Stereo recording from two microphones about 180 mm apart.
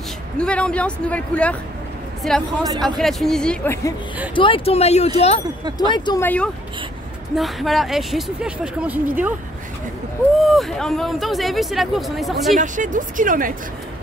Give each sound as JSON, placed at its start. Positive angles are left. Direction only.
{"t": 0.4, "sound": "speech", "side_deg": 5}
{"t": 3.0, "sound": "speech", "side_deg": 0}
{"t": 4.4, "sound": "speech", "side_deg": 30}
{"t": 5.8, "sound": "speech", "side_deg": 25}
{"t": 6.2, "sound": "speech", "side_deg": 10}
{"t": 10.4, "sound": "speech", "side_deg": 0}
{"t": 12.5, "sound": "a woman's voice", "side_deg": -45}